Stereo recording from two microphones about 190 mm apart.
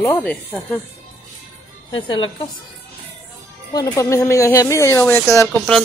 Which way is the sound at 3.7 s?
20° left (ahead or behind).